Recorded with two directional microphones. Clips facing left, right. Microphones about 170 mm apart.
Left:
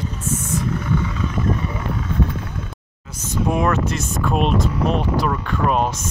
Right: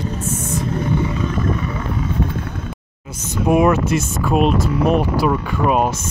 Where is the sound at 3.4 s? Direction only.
10° right (ahead or behind).